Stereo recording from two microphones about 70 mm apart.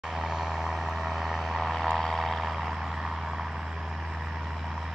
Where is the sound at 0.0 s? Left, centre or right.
Centre.